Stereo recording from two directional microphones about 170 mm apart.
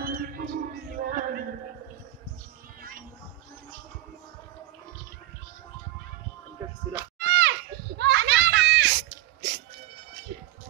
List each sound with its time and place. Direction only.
0.0 s music: 65° right (ahead or behind)
7.2 s children playing: 85° right